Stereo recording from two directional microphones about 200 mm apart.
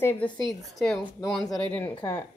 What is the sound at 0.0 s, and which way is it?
Speech, 10° left (ahead or behind).